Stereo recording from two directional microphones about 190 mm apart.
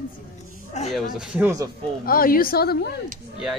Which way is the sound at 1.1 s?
5° right (ahead or behind).